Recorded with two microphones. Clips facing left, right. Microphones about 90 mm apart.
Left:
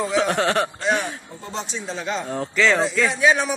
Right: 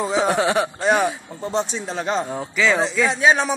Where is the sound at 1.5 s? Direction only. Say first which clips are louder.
Right 5 dB; 40° right (ahead or behind).